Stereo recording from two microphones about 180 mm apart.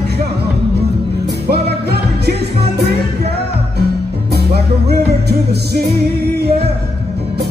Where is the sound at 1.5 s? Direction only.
65° right (ahead or behind).